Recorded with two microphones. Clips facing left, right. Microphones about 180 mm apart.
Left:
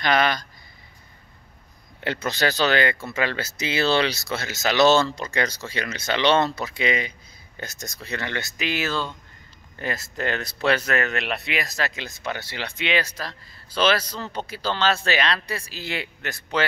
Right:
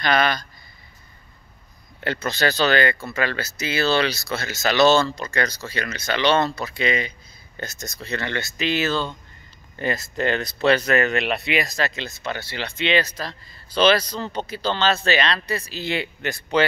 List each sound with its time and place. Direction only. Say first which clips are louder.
0.0 s speech: right 1 dB; 15° left (ahead or behind)
2.0 s a man's voice: right 1 dB; 15° left (ahead or behind)